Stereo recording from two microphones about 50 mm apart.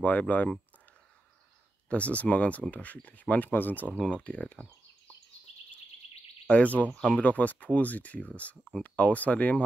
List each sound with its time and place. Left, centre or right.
0.0 s speech: left
1.9 s speech: left
6.4 s speech: left